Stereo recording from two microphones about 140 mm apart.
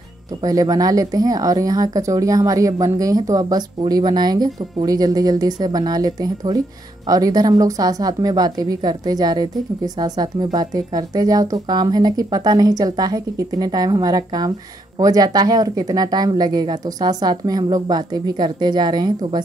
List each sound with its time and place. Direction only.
0.4 s speech: 25° right (ahead or behind)